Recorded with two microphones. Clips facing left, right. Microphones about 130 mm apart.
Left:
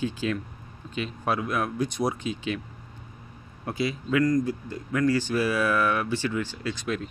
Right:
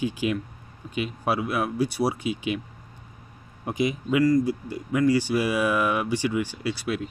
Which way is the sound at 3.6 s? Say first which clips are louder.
Right 3 dB; 15° right (ahead or behind).